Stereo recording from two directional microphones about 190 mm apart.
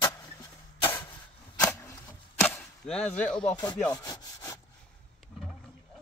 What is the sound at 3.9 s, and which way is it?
Sawing, 20° left (ahead or behind).